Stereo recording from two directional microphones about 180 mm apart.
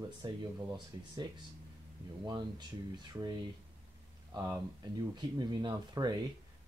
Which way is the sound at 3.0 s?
20° right (ahead or behind).